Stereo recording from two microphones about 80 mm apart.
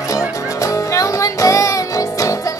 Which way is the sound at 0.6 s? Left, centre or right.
Left.